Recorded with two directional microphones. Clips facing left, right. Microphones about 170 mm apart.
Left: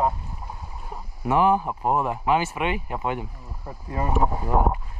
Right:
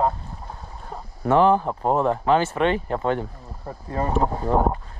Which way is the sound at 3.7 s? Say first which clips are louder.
Right 4 dB; 50° right (ahead or behind).